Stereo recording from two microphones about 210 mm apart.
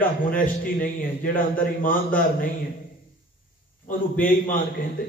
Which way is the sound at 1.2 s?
40° left (ahead or behind).